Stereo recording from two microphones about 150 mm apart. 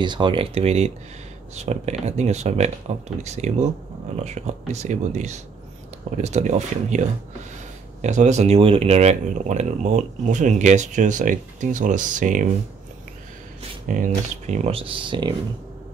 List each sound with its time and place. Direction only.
0.0 s speech: 30° right (ahead or behind); by 12.4 s 60° right (ahead or behind)
13.8 s speech: 60° right (ahead or behind); by 15.3 s 35° right (ahead or behind)